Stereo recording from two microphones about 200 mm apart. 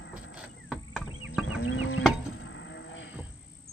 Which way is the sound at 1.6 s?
90° left.